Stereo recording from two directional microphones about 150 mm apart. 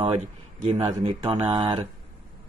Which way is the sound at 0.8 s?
40° right (ahead or behind).